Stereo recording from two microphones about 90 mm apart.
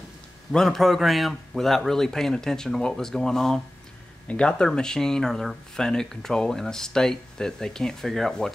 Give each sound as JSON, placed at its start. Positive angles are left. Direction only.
{"t": 0.5, "sound": "speech", "side_deg": 5}